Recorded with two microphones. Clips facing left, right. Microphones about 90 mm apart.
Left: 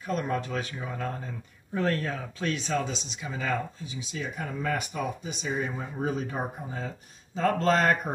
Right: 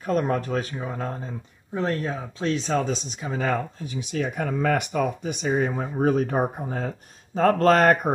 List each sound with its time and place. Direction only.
0.0 s speech: 45° right (ahead or behind)
1.7 s speech: 20° right (ahead or behind)
2.5 s speech: 35° right (ahead or behind); by 8.1 s 50° right (ahead or behind)